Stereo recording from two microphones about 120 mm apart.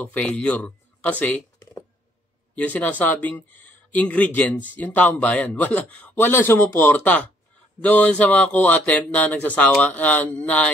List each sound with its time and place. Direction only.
0.0 s speech: 10° left (ahead or behind)
1.6 s a sound: 25° left (ahead or behind)
2.5 s speech: 15° left (ahead or behind)